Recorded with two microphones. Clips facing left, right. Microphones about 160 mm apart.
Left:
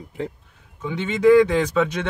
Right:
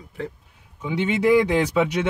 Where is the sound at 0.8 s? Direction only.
10° right (ahead or behind).